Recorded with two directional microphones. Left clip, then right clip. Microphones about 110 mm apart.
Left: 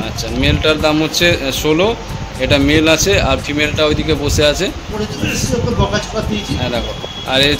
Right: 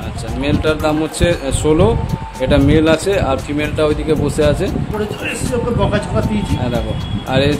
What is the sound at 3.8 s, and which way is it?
Speech, 25° right (ahead or behind).